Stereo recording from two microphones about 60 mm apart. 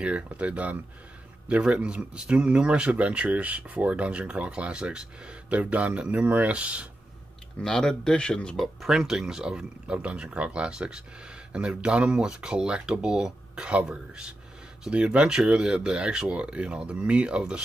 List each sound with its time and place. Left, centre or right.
0.0 s speech: right
7.6 s speech: centre
8.5 s speech: centre